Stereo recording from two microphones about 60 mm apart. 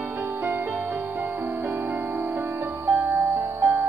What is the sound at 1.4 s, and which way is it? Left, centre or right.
Music, right.